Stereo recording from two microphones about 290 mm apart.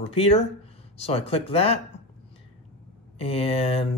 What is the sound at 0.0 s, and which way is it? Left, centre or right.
Speech, centre.